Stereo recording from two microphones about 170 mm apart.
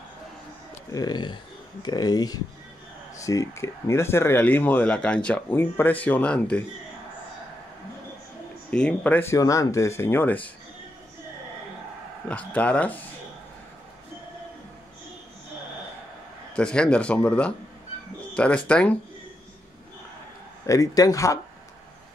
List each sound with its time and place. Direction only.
0.9 s speech: 25° left (ahead or behind); by 6.6 s 5° left (ahead or behind)
8.6 s speech: 10° left (ahead or behind)
12.3 s speech: 10° left (ahead or behind)
16.5 s speech: 5° left (ahead or behind)
20.6 s speech: 20° left (ahead or behind)